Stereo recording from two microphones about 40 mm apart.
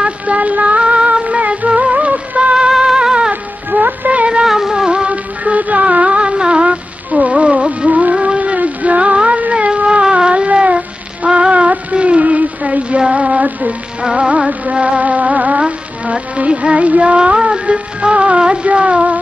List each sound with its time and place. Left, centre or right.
0.0 s a sound: right
1.8 s music: right
2.8 s a sound: centre
3.7 s music: right
4.5 s music: centre
5.1 s music: right
8.1 s a sound: right
13.0 s music: right
14.0 s music: right